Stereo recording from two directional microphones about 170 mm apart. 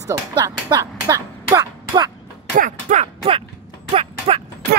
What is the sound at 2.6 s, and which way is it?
Speech, 45° right (ahead or behind).